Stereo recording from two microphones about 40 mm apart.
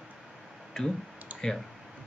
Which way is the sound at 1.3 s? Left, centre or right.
Right.